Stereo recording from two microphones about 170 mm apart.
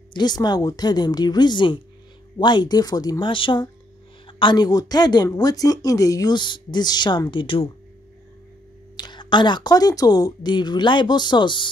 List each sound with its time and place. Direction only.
0.1 s speech: 25° left (ahead or behind)
8.9 s speech: 25° left (ahead or behind)